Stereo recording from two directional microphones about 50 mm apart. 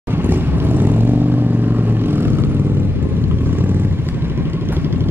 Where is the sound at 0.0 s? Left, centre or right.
Right.